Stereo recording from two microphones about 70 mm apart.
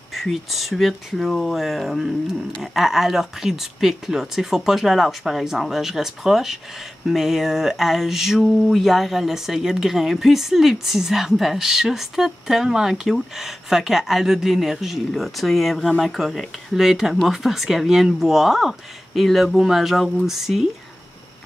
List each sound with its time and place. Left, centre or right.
0.1 s mantra: centre